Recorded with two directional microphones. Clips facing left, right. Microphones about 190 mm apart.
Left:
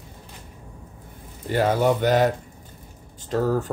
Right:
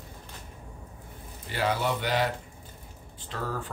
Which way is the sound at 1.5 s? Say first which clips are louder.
Left 8 dB; 45° left (ahead or behind).